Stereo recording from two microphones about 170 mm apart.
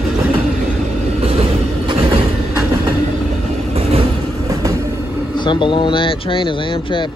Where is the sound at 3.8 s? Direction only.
35° right (ahead or behind).